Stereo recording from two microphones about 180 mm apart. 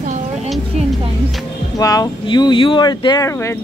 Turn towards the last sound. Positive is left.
turn(degrees=15)  # may be behind; listen again after turning